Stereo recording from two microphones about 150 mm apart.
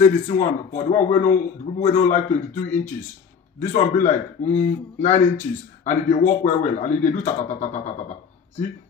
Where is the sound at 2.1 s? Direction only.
10° left (ahead or behind).